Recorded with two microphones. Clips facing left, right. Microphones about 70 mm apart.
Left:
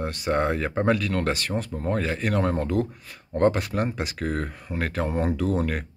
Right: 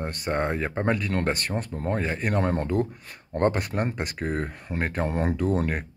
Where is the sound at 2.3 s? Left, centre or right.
Right.